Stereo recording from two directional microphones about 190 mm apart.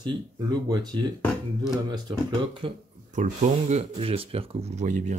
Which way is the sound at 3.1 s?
40° right (ahead or behind).